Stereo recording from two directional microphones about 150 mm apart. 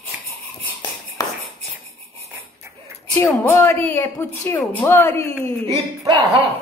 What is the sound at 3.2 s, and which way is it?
Speech, 15° left (ahead or behind).